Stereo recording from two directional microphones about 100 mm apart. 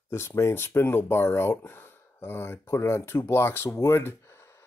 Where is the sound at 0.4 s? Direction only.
25° left (ahead or behind).